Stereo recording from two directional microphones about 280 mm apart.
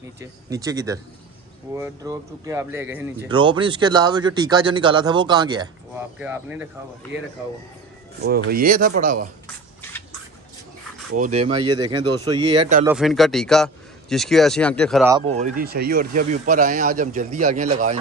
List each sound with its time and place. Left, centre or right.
0.2 s speech: centre
8.2 s speech: right
11.1 s speech: right
12.8 s a man's voice: centre
15.0 s speech: centre